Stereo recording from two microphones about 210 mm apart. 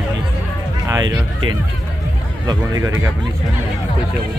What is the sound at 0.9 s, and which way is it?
Speech, 15° right (ahead or behind).